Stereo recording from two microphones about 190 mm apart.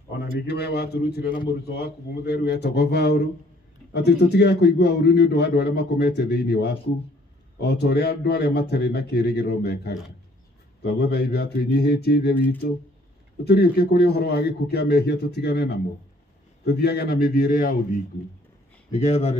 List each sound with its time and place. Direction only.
0.2 s a man's voice: 60° left (ahead or behind)
13.4 s a man's voice: 55° left (ahead or behind)
18.9 s speech: 35° left (ahead or behind)